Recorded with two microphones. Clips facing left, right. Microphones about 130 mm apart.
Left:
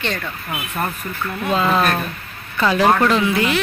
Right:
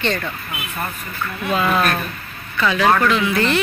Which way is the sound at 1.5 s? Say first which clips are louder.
Left 1 dB; 25° left (ahead or behind).